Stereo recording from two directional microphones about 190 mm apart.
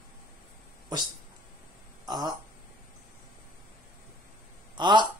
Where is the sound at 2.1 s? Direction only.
20° right (ahead or behind).